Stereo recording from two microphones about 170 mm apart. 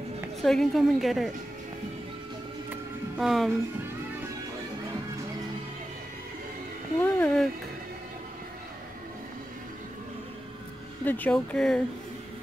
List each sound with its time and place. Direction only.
0.4 s a woman's voice: centre (ahead or behind)
2.7 s music: centre (ahead or behind)
7.0 s speech: 10° left (ahead or behind)
11.1 s a woman's voice: 10° left (ahead or behind)